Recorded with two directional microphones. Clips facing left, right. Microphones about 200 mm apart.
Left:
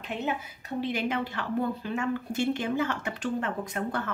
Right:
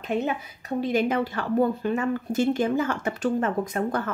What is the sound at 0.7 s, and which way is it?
Speech, 45° right (ahead or behind).